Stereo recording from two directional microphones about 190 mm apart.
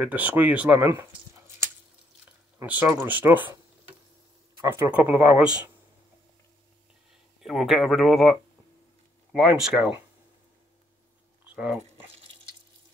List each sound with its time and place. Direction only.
0.0 s speech: 10° right (ahead or behind)
2.8 s speech: 10° right (ahead or behind)
4.6 s speech: 15° right (ahead or behind)
7.4 s speech: centre (ahead or behind)
11.4 s dog: 5° right (ahead or behind)
11.8 s a sound: 35° right (ahead or behind)